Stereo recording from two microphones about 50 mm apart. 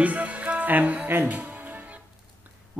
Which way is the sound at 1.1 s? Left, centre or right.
Right.